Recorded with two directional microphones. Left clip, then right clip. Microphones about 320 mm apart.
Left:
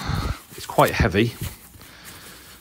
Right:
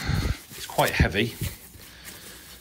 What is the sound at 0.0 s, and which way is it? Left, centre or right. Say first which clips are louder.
Dog: left 2 dB; centre.